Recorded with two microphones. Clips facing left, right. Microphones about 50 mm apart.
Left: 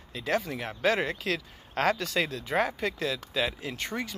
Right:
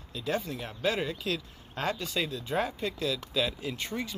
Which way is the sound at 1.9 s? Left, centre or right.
Left.